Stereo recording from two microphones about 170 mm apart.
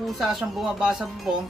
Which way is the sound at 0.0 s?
Centre (ahead or behind).